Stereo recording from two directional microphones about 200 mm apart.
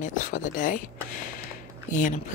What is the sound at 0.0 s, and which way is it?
Speech, 40° left (ahead or behind).